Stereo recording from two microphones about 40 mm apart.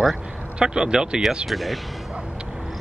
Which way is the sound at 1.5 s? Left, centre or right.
Centre.